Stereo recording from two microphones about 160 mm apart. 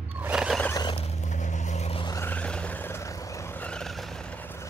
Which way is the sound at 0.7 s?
25° left (ahead or behind).